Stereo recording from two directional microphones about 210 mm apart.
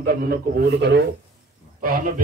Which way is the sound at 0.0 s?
45° right (ahead or behind).